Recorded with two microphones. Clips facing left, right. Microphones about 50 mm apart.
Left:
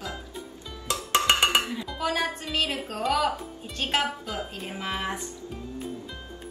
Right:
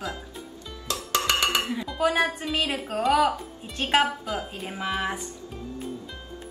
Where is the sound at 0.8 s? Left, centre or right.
Left.